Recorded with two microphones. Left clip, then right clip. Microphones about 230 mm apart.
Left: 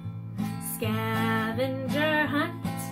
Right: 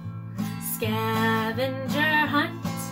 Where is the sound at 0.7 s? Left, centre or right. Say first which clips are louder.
Right 4 dB; centre.